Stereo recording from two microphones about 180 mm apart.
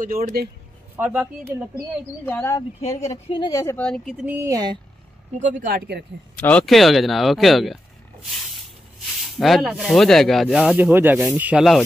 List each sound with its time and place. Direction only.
0.0 s speech: 50° right (ahead or behind)
0.9 s speech: 10° right (ahead or behind)
2.2 s speech: 15° left (ahead or behind)
4.3 s speech: 15° right (ahead or behind)
5.4 s speech: 45° right (ahead or behind)
6.3 s speech: 5° left (ahead or behind)
9.1 s speech: centre (ahead or behind)